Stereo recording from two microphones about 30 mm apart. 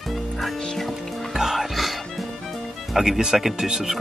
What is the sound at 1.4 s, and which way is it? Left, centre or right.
Music, centre.